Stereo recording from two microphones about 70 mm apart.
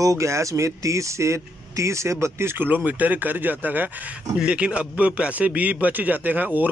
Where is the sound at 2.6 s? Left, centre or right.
Right.